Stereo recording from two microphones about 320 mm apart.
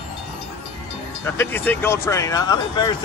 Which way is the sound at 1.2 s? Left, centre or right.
Centre.